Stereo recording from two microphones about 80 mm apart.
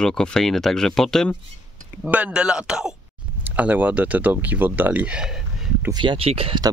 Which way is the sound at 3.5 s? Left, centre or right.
Centre.